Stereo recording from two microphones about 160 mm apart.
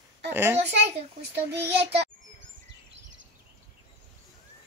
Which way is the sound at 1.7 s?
35° right (ahead or behind).